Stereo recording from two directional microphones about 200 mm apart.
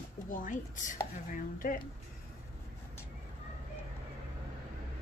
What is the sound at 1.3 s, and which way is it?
Sanding, 45° left (ahead or behind).